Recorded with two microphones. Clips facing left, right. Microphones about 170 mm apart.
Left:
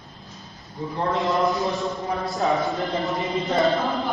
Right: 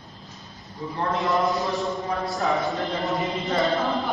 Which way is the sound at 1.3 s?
Centre (ahead or behind).